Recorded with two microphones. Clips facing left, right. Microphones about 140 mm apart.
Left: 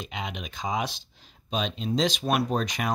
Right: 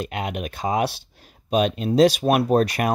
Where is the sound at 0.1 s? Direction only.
55° right (ahead or behind).